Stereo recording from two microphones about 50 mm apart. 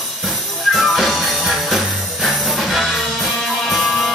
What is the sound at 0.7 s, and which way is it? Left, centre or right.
Music, centre.